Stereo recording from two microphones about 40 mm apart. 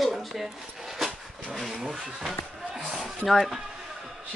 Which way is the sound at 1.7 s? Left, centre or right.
Centre.